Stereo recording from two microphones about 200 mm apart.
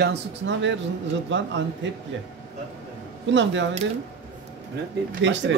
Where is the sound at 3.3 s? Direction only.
65° right (ahead or behind).